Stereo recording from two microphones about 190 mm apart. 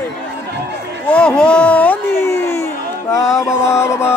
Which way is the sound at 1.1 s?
5° left (ahead or behind).